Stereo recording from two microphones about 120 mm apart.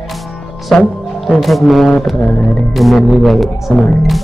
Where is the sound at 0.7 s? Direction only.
5° left (ahead or behind).